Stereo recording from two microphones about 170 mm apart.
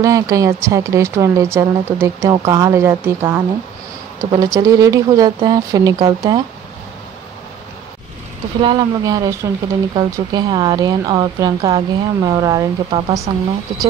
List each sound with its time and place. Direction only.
0.0 s a woman's voice: 20° right (ahead or behind)
8.5 s speech: 25° right (ahead or behind)